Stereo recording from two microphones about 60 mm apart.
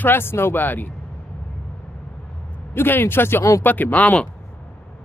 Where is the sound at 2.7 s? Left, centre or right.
Left.